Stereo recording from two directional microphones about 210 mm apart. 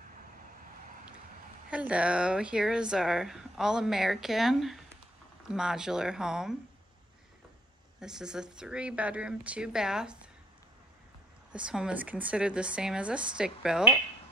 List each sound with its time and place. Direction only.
1.7 s speech: 5° right (ahead or behind)
8.0 s speech: 5° right (ahead or behind)
11.5 s speech: 5° right (ahead or behind)